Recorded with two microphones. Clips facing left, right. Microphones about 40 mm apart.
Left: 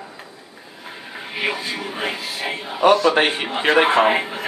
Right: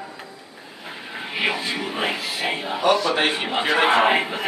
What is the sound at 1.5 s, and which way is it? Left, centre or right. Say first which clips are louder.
Music: right 1 dB; centre.